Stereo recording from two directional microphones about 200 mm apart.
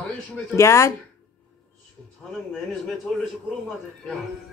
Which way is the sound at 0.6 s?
15° left (ahead or behind).